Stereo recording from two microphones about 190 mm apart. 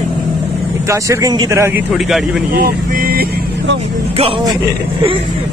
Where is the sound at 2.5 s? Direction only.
50° right (ahead or behind).